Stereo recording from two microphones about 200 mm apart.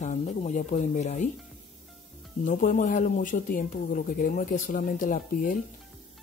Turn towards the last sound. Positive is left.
turn(degrees=40)  # may be behind; listen again after turning